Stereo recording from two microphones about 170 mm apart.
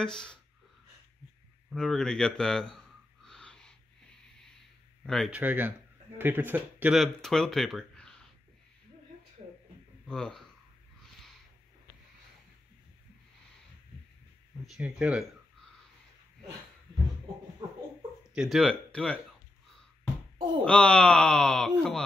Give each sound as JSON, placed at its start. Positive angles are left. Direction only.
{"t": 0.0, "sound": "speech", "side_deg": 5}
{"t": 1.7, "sound": "speech", "side_deg": 0}
{"t": 3.3, "sound": "wheeze", "side_deg": 5}
{"t": 5.0, "sound": "speech", "side_deg": 0}
{"t": 5.4, "sound": "speech", "side_deg": -10}
{"t": 10.0, "sound": "speech", "side_deg": 5}
{"t": 14.7, "sound": "speech", "side_deg": -5}
{"t": 18.3, "sound": "speech", "side_deg": 0}
{"t": 20.6, "sound": "speech", "side_deg": 5}